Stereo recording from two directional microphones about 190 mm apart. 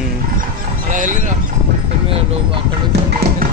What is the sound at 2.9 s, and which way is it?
Speech, 60° right (ahead or behind).